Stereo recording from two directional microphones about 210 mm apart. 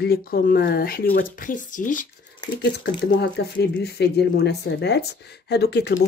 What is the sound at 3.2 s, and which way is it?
Speech, 55° left (ahead or behind).